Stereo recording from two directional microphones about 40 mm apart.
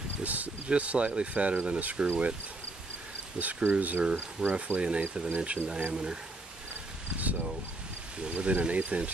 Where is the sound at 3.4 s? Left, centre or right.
Right.